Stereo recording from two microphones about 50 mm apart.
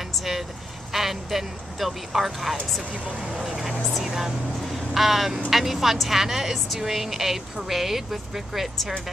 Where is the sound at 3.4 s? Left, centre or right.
Centre.